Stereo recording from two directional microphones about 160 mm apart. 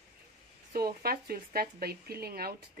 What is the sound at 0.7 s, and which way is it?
Speech, 70° right (ahead or behind).